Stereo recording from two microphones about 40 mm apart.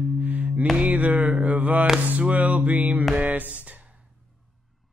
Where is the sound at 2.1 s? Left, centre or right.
Right.